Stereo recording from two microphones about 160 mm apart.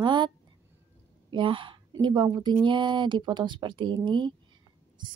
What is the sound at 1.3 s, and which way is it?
A woman's voice, 30° right (ahead or behind).